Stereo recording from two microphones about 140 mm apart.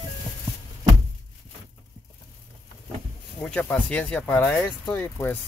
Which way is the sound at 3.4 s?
10° left (ahead or behind).